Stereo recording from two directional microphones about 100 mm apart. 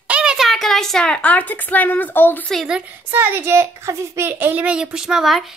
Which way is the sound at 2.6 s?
10° right (ahead or behind).